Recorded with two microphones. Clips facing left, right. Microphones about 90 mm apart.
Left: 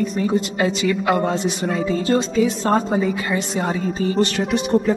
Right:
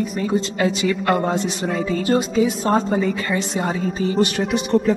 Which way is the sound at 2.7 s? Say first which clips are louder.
Even; 10° left (ahead or behind).